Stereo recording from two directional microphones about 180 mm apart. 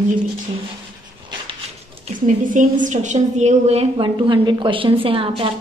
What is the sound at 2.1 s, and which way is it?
A woman's voice, 45° right (ahead or behind).